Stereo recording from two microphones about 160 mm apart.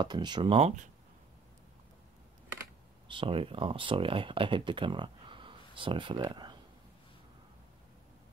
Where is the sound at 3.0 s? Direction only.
30° right (ahead or behind).